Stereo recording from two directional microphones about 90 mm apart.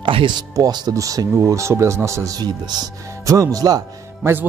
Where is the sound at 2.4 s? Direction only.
50° right (ahead or behind).